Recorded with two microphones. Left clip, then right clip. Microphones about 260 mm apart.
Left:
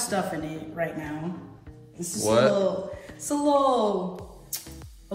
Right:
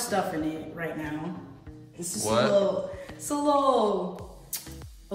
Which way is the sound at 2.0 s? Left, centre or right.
Centre.